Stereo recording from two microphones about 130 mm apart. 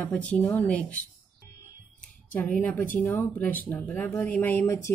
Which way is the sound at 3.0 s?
15° left (ahead or behind).